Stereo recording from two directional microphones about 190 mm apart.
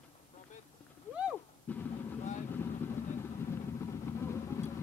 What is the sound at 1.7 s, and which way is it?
Music, 5° left (ahead or behind).